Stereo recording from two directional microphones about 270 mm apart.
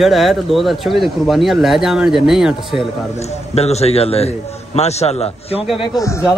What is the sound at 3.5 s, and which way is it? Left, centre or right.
A man's voice, left.